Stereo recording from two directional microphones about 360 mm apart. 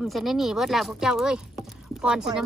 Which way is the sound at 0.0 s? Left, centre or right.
Centre.